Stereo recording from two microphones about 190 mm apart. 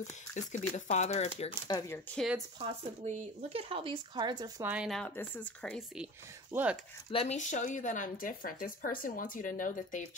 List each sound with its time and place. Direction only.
0.0 s speech: 40° left (ahead or behind)
1.7 s speech: 15° left (ahead or behind)
2.6 s speech: 30° right (ahead or behind)
4.6 s speech: 5° right (ahead or behind)
6.5 s speech: 10° right (ahead or behind)
7.1 s speech: 35° left (ahead or behind)